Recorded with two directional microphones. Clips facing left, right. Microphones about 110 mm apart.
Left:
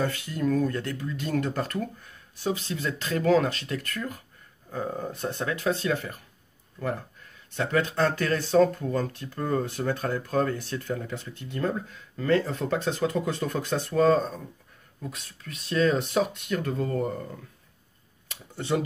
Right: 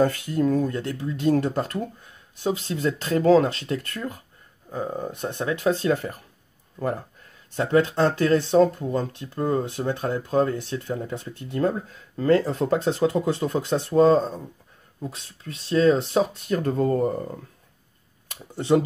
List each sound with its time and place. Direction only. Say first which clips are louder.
0.3 s speech: right 3 dB; 30° right (ahead or behind)
4.6 s speech: right 2 dB; 20° right (ahead or behind); by 17.2 s 35° right (ahead or behind)